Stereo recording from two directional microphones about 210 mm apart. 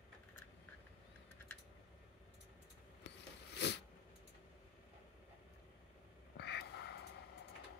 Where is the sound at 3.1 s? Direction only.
55° left (ahead or behind).